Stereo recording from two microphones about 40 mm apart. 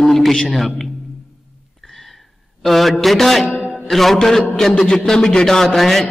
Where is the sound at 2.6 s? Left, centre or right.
Centre.